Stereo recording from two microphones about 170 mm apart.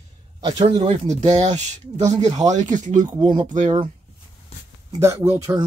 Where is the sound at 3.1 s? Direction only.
25° right (ahead or behind).